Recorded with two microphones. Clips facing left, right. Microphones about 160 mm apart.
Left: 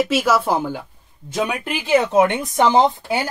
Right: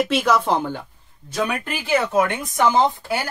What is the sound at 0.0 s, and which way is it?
Speech, 5° left (ahead or behind).